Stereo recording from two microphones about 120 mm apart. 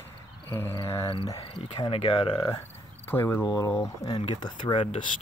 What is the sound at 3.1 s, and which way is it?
Speech, 15° left (ahead or behind).